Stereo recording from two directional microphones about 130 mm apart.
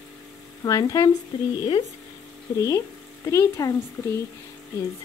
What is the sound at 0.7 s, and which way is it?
Speech, 25° left (ahead or behind).